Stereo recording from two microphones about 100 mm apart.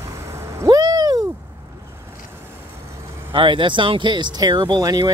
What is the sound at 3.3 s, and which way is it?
Speech, 55° right (ahead or behind).